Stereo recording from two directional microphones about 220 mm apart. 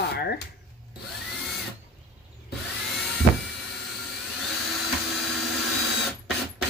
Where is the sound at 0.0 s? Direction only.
45° left (ahead or behind).